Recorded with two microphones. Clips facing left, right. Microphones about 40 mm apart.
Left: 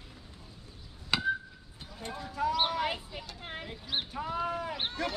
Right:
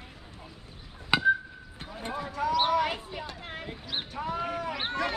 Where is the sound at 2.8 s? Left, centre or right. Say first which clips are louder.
Right 3 dB; right.